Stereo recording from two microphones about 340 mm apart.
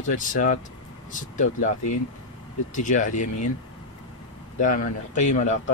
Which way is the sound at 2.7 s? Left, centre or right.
Left.